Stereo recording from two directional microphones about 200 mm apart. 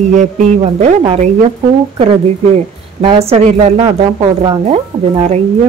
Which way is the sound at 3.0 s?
30° right (ahead or behind).